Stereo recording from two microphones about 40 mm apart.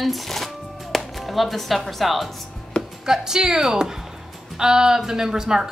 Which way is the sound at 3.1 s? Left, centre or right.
Centre.